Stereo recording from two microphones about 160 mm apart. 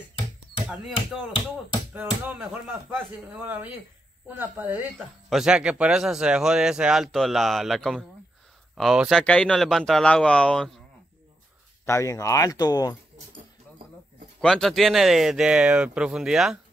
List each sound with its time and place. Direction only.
2.0 s speech: 5° right (ahead or behind)
4.9 s speech: centre (ahead or behind)
11.8 s speech: 20° left (ahead or behind)
14.4 s speech: centre (ahead or behind)